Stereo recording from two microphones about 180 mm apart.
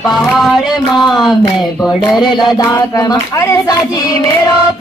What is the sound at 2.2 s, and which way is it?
Music, 25° left (ahead or behind).